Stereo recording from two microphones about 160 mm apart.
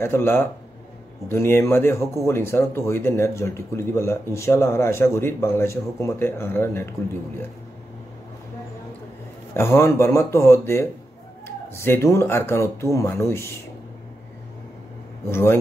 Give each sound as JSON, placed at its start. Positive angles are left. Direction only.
{"t": 0.0, "sound": "speech", "side_deg": 15}
{"t": 9.5, "sound": "speech", "side_deg": 15}
{"t": 15.2, "sound": "speech", "side_deg": 15}